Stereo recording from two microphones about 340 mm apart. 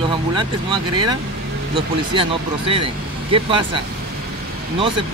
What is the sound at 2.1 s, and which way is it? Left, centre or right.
Speech, centre.